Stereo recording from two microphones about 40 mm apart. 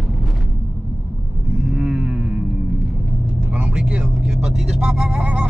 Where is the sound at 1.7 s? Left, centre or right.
Centre.